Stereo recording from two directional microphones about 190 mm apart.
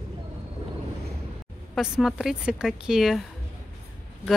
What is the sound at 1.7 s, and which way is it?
Speech, centre (ahead or behind).